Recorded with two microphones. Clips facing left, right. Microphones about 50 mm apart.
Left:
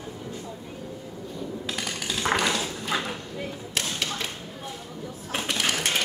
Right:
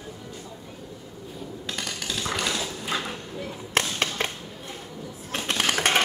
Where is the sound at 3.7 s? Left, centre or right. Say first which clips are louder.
Right 5 dB; right.